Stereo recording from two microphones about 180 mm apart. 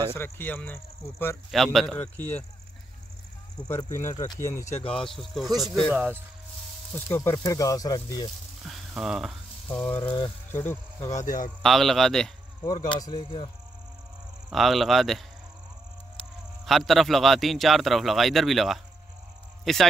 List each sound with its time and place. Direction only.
0.1 s a man's voice: 10° left (ahead or behind)
4.1 s speech: 20° left (ahead or behind)
4.8 s a man's voice: 5° left (ahead or behind)
7.1 s speech: 15° left (ahead or behind)
8.6 s sizzle: centre (ahead or behind)
9.7 s speech: 10° left (ahead or behind)
11.2 s a man's voice: 50° left (ahead or behind)
11.6 s a man's voice: centre (ahead or behind)
12.7 s speech: 25° left (ahead or behind)
14.5 s a man's voice: centre (ahead or behind)
16.6 s a man's voice: centre (ahead or behind)